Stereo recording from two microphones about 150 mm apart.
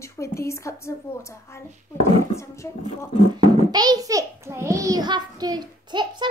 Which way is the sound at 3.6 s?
25° right (ahead or behind).